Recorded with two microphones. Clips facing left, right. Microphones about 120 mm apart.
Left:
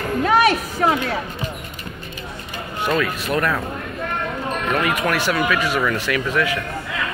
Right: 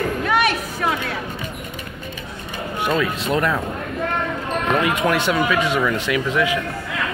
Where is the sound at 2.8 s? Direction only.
15° right (ahead or behind).